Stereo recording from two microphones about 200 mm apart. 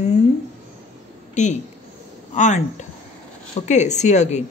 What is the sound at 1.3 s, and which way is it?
A woman's voice, 35° left (ahead or behind).